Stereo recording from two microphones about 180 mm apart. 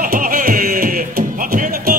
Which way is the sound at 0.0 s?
50° right (ahead or behind).